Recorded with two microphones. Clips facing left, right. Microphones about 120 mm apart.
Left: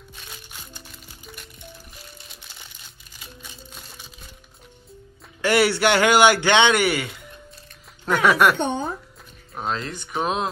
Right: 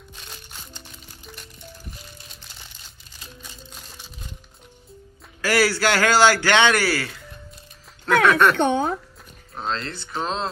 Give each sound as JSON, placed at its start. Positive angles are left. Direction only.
{"t": 0.2, "sound": "music", "side_deg": 5}
{"t": 3.3, "sound": "music", "side_deg": 5}
{"t": 5.4, "sound": "a man's voice", "side_deg": 25}
{"t": 8.5, "sound": "speech", "side_deg": -70}
{"t": 9.6, "sound": "speech", "side_deg": 10}